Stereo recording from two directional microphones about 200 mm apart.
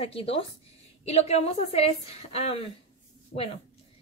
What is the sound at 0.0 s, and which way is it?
A woman's voice, 30° left (ahead or behind).